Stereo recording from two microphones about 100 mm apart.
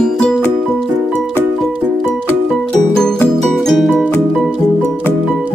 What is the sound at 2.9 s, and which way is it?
Music, 10° left (ahead or behind).